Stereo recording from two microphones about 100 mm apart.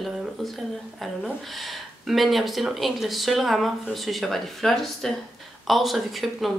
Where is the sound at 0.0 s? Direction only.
Centre (ahead or behind).